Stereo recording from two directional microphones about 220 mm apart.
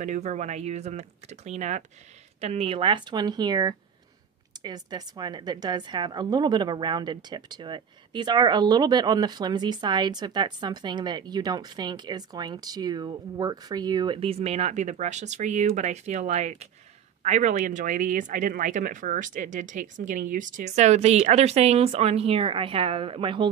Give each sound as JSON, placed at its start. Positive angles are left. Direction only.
{"t": 0.0, "sound": "a woman's voice", "side_deg": -35}